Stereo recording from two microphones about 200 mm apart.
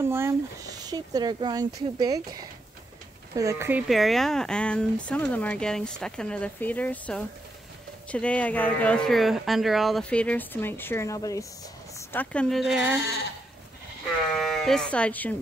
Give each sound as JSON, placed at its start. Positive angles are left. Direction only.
{"t": 0.0, "sound": "speech", "side_deg": -10}
{"t": 3.9, "sound": "speech", "side_deg": 0}
{"t": 14.4, "sound": "speech", "side_deg": 0}